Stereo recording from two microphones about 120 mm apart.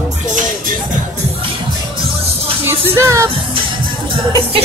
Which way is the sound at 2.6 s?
20° right (ahead or behind).